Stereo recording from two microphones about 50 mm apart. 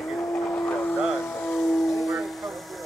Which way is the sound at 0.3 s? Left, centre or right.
Left.